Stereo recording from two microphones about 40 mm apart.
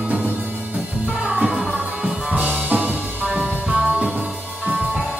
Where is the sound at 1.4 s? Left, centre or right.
Centre.